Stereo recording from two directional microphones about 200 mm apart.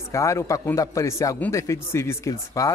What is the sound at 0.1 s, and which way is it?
Speech, 15° left (ahead or behind).